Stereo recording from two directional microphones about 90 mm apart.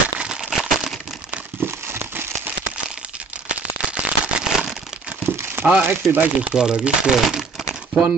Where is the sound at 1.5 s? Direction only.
25° right (ahead or behind).